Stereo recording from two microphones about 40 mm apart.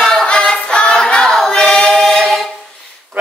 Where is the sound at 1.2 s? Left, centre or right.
Centre.